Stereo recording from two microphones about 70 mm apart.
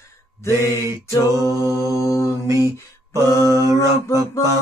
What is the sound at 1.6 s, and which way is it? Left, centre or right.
Mantra, right.